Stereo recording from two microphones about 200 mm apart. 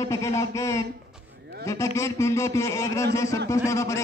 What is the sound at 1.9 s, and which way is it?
A man's voice, 15° left (ahead or behind).